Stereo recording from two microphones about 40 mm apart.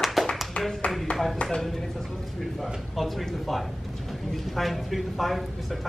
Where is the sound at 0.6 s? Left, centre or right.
Left.